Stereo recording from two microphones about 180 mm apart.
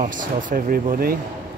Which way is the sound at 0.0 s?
45° right (ahead or behind).